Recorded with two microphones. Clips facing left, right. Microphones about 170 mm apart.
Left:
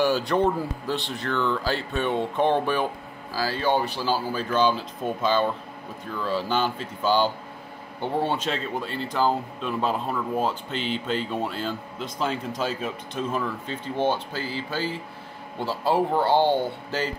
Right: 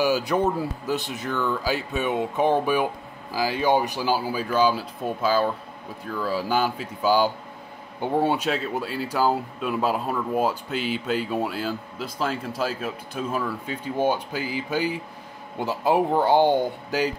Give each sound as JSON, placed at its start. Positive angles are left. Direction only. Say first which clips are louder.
{"t": 0.0, "sound": "speech", "louder": "even", "side_deg": -5}